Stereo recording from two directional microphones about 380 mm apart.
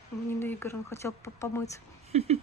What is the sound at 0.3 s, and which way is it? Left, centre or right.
Speech, centre.